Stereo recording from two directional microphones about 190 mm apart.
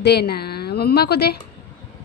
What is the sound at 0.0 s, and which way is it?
A woman's voice, 60° left (ahead or behind).